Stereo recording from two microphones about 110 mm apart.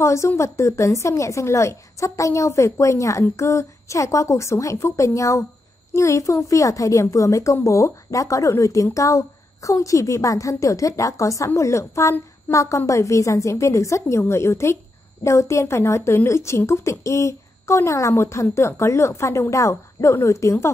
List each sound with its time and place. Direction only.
0.0 s speech: 25° left (ahead or behind)